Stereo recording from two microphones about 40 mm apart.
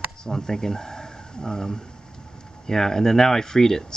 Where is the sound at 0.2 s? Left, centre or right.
Centre.